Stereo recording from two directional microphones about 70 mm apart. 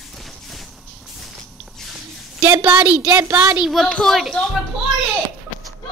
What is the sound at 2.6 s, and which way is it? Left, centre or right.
Speech, right.